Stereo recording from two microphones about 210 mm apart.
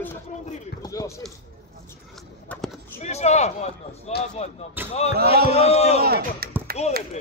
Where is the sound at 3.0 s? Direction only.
30° left (ahead or behind).